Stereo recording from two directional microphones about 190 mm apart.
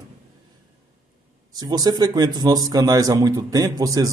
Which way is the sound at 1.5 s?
20° right (ahead or behind).